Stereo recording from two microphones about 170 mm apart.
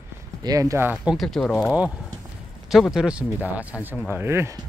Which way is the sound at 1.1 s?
Centre (ahead or behind).